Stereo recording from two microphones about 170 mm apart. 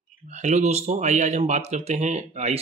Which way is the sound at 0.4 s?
40° right (ahead or behind).